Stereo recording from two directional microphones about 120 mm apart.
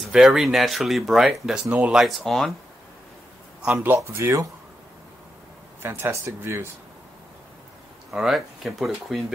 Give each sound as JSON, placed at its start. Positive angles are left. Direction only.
{"t": 0.1, "sound": "speech", "side_deg": -5}
{"t": 3.6, "sound": "a man's voice", "side_deg": -15}
{"t": 5.8, "sound": "speech", "side_deg": -20}
{"t": 8.1, "sound": "speech", "side_deg": 0}